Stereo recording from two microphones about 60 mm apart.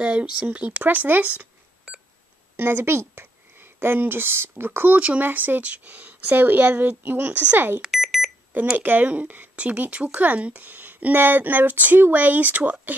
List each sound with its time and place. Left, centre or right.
0.0 s speech: centre
2.5 s speech: right
7.8 s alarm clock: centre
8.7 s speech: right